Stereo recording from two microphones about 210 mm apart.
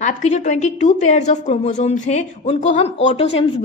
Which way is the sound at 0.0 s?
35° left (ahead or behind).